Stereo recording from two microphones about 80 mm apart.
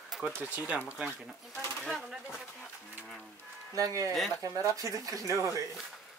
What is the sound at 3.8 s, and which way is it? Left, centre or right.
Speech, right.